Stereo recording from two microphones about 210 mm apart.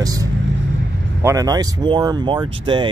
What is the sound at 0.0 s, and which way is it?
Vehicle, 15° right (ahead or behind).